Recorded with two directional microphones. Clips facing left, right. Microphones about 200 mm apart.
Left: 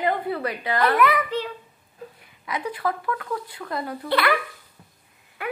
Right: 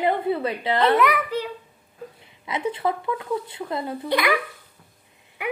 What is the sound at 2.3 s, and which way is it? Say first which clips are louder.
Speech: right 3 dB; 25° right (ahead or behind).